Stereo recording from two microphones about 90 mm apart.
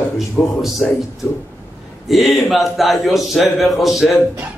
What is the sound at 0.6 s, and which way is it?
Speech, centre (ahead or behind).